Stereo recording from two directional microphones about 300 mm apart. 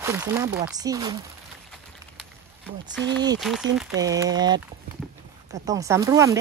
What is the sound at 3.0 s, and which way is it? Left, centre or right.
Speech, right.